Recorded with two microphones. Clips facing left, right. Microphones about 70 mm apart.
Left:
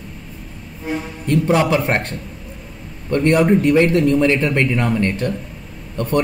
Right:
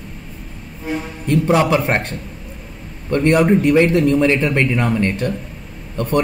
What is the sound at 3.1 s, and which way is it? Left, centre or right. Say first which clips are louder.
Speech: right 1 dB; centre.